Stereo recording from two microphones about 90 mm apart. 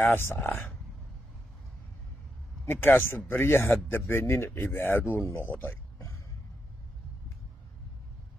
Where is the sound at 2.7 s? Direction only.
25° left (ahead or behind).